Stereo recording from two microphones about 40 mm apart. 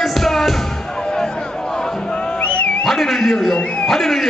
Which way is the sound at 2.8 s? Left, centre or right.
Centre.